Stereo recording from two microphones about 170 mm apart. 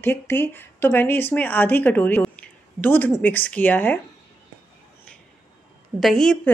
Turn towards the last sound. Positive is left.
turn(degrees=5)  # may be behind; listen again after turning